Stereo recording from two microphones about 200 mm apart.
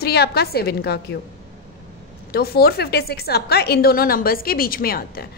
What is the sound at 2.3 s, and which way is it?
A woman's voice, 50° left (ahead or behind).